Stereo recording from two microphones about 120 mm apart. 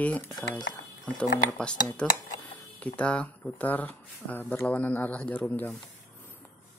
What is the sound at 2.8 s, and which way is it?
Speech, 10° left (ahead or behind).